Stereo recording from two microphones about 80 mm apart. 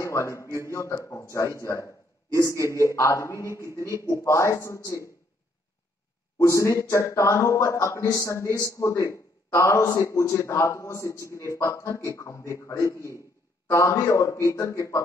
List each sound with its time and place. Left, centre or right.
0.0 s a man's voice: left
6.4 s a man's voice: left